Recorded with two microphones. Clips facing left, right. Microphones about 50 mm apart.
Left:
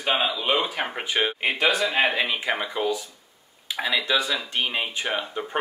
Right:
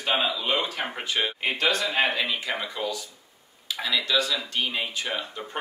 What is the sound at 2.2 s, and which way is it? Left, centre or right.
Speech, left.